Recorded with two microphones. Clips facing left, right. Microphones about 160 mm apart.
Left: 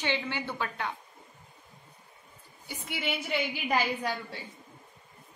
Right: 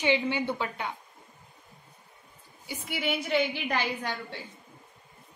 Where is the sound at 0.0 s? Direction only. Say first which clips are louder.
Right 6 dB; 15° right (ahead or behind).